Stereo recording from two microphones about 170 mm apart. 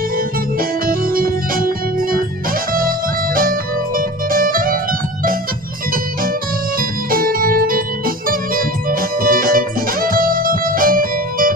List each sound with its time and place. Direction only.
0.6 s organ: 55° right (ahead or behind)
3.3 s music: 55° right (ahead or behind)
6.8 s organ: 55° right (ahead or behind)
9.2 s music: 55° right (ahead or behind)